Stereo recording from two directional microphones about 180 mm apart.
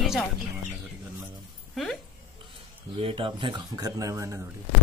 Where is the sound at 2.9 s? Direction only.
30° right (ahead or behind).